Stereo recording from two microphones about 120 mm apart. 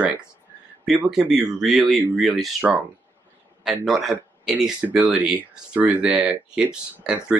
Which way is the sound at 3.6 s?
5° right (ahead or behind).